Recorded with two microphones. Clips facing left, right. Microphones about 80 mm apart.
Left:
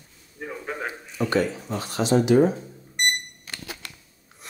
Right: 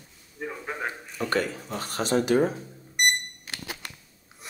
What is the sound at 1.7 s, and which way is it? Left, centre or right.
Speech, right.